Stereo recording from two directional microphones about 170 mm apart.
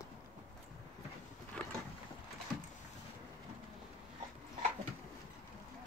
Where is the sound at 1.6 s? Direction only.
5° left (ahead or behind).